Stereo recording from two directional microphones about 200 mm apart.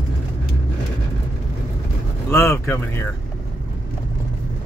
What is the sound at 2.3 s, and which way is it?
Speech, 10° left (ahead or behind).